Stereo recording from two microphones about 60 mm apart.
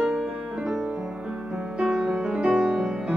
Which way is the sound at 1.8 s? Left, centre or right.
Centre.